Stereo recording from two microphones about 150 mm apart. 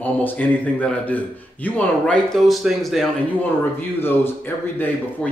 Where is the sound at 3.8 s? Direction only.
15° left (ahead or behind).